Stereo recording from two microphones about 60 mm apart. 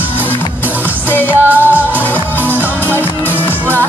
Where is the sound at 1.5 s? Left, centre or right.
Right.